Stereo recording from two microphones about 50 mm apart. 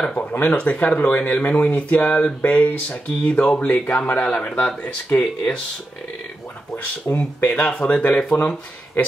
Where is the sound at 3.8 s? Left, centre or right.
Left.